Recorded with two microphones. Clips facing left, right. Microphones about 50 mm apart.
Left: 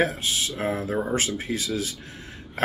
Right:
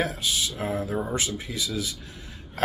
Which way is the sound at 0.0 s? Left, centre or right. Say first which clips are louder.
Left 3 dB; left.